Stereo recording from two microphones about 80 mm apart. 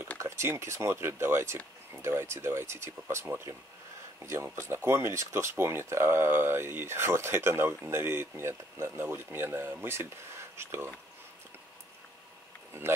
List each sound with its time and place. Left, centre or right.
0.2 s speech: right